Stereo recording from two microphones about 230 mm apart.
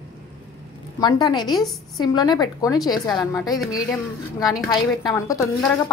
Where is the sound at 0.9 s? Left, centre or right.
Centre.